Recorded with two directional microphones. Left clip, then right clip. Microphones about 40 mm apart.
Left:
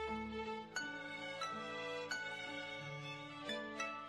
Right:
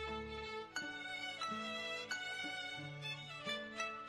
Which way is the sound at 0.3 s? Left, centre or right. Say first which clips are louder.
Left 1 dB; right.